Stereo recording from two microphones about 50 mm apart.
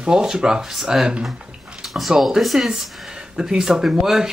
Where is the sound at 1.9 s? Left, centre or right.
Centre.